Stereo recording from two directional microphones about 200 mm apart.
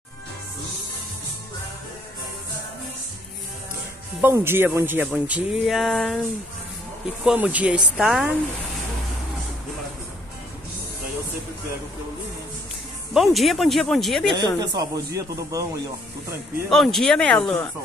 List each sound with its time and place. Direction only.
4.2 s speech: 10° right (ahead or behind)
7.2 s speech: 5° right (ahead or behind)
13.1 s speech: centre (ahead or behind)
14.3 s speech: 20° right (ahead or behind)
16.6 s speech: centre (ahead or behind)